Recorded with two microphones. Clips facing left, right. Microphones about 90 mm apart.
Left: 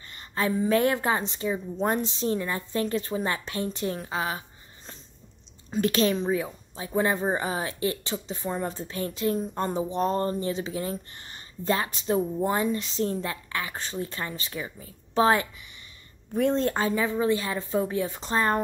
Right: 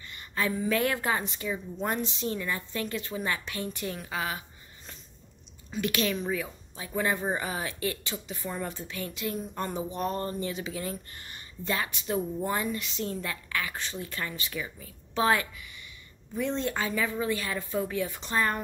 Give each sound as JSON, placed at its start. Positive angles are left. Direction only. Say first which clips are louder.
{"t": 0.1, "sound": "a woman's voice", "louder": "left 3 dB", "side_deg": 30}
{"t": 16.3, "sound": "speech", "louder": "left 6 dB", "side_deg": 45}